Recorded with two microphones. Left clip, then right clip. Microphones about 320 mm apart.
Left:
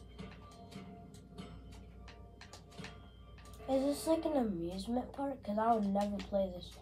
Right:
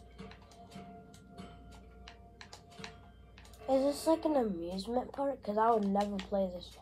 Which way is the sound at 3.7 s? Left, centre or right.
Right.